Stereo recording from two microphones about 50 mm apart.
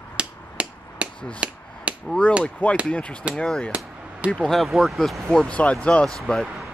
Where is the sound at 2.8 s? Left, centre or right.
Left.